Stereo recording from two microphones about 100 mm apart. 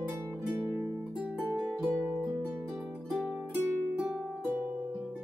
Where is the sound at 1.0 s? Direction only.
10° right (ahead or behind).